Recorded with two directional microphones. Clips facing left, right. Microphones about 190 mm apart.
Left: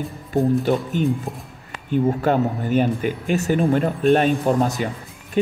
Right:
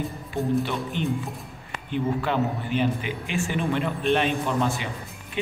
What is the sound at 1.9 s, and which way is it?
Speech, 45° left (ahead or behind).